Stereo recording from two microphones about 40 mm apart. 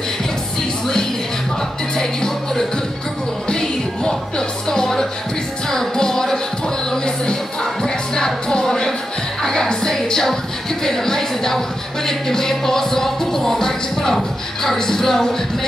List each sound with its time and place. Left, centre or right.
2.0 s music: centre
10.8 s a woman's voice: centre
12.1 s music: centre